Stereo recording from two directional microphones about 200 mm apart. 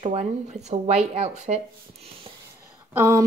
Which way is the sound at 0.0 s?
30° right (ahead or behind).